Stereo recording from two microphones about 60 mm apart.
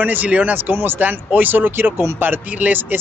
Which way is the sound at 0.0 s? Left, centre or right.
Right.